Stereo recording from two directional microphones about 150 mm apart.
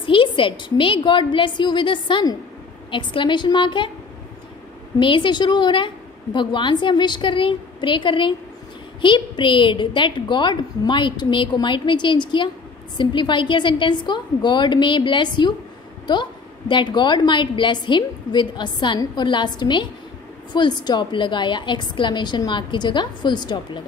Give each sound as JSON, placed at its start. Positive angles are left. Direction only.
{"t": 0.0, "sound": "a woman's voice", "side_deg": 35}
{"t": 4.9, "sound": "a woman's voice", "side_deg": 35}